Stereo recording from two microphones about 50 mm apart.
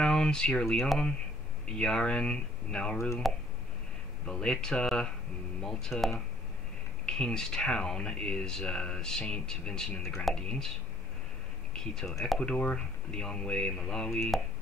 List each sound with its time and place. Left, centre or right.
0.0 s a sound: centre
1.8 s speech: centre
4.3 s speech: centre
10.4 s speech: centre
11.7 s speech: centre